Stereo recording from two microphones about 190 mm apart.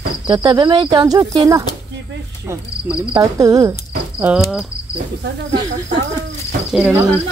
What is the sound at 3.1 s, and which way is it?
Speech, 15° right (ahead or behind).